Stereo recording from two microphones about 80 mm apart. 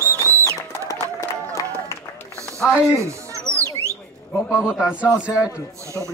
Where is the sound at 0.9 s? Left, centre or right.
Left.